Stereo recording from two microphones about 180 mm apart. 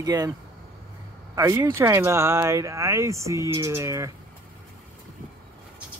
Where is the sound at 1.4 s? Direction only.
15° right (ahead or behind).